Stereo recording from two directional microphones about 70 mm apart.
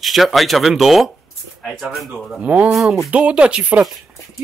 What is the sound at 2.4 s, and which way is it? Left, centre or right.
Speech, centre.